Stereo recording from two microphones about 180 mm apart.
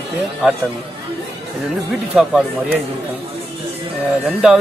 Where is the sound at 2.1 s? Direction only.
Centre (ahead or behind).